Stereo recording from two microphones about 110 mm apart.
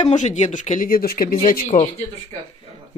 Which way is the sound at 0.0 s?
90° left.